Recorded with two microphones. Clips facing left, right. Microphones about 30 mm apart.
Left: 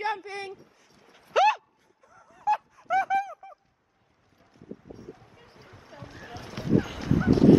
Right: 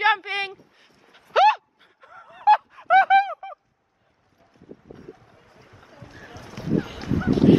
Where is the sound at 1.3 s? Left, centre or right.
Right.